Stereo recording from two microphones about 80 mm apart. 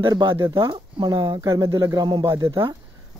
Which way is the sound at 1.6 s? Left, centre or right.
Right.